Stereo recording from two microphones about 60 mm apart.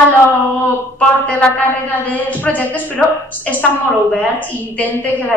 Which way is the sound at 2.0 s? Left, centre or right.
Left.